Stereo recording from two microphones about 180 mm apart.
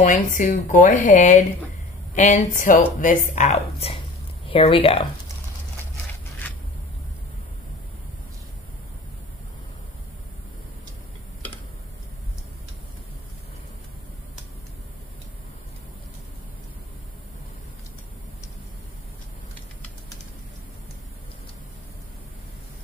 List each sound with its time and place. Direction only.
0.0 s speech: 45° left (ahead or behind)